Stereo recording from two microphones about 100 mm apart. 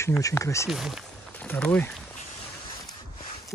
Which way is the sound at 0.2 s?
30° left (ahead or behind).